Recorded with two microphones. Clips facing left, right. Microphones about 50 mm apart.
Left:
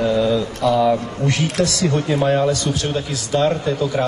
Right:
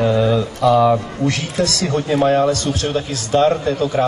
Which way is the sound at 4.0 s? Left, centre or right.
Centre.